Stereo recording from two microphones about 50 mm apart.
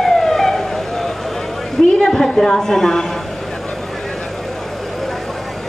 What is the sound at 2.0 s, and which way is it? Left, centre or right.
A woman's voice, centre.